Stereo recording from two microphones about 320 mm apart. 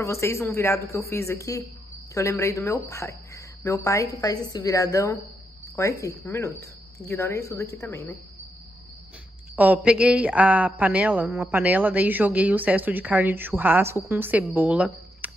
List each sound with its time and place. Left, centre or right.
0.0 s a woman's voice: centre
9.6 s a woman's voice: centre